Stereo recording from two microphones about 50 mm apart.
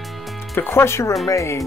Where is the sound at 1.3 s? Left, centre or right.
Left.